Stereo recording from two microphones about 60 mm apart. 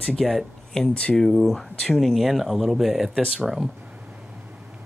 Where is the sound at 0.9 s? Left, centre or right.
Centre.